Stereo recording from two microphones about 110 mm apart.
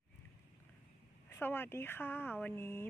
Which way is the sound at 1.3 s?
20° left (ahead or behind).